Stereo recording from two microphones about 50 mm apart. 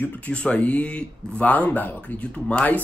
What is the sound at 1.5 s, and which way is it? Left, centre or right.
Speech, left.